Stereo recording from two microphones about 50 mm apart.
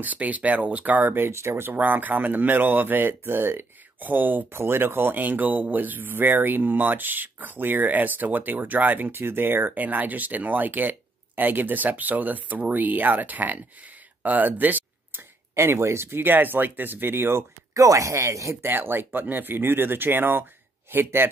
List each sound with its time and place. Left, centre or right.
0.0 s speech: right
1.8 s speech: right
9.1 s speech: right
9.8 s speech: right
15.5 s speech: right
18.6 s speech: right